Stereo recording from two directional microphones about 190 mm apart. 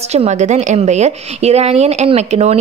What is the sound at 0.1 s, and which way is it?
Speech, 35° right (ahead or behind).